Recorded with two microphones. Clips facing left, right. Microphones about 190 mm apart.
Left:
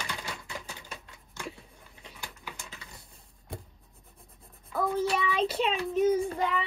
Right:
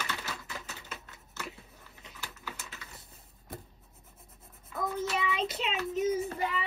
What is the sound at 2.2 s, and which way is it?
Typing, 15° left (ahead or behind).